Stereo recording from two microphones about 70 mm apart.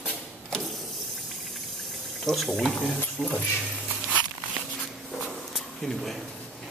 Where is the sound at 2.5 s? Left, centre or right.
Centre.